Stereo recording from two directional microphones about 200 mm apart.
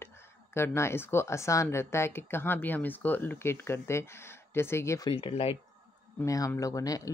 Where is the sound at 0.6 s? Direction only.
10° left (ahead or behind); by 5.6 s 30° left (ahead or behind).